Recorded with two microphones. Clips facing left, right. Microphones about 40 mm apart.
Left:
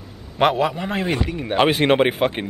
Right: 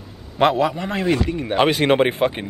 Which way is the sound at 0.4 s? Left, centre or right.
Centre.